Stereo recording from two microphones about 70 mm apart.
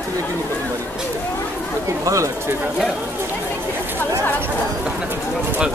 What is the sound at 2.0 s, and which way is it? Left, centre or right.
Speech, right.